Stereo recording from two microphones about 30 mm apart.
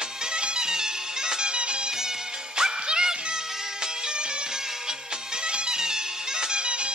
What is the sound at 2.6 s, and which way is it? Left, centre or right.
Music, right.